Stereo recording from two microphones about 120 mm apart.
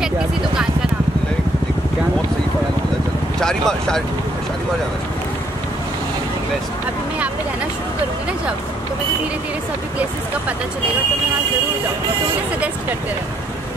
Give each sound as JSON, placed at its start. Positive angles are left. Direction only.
{"t": 3.3, "sound": "speech", "side_deg": 5}